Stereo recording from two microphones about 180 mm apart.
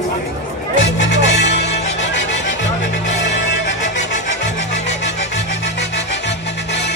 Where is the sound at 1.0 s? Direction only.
70° left (ahead or behind).